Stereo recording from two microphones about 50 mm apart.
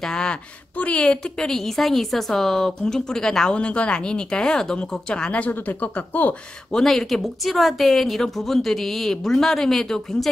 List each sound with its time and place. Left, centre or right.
0.0 s a woman's voice: centre
0.7 s a woman's voice: left
3.5 s speech: left
5.5 s speech: left
6.7 s speech: centre